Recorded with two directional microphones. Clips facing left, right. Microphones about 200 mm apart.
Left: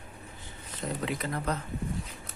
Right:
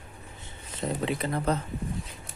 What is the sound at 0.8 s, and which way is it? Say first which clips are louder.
Speech: right 4 dB; 25° right (ahead or behind).